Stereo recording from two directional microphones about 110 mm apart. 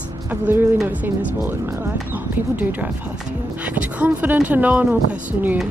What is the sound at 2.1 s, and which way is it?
Speech, 15° right (ahead or behind).